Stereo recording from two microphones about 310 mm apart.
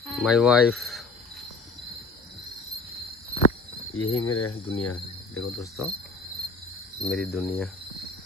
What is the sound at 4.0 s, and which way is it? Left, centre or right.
Cricket, left.